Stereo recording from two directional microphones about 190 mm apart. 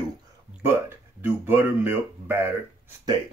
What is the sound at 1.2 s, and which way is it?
Speech, 10° right (ahead or behind).